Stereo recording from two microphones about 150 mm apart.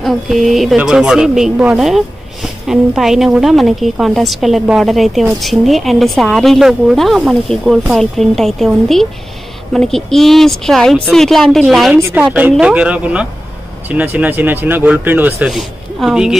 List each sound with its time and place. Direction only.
0.0 s a woman's voice: centre (ahead or behind)
11.9 s speech: 15° right (ahead or behind)